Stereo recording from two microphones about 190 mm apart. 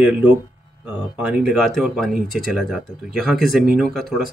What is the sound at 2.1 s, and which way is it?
Speech, 45° left (ahead or behind).